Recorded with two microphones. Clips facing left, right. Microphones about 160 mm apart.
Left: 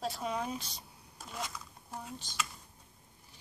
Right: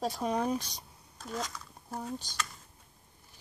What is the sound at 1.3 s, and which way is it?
Speech, 5° left (ahead or behind).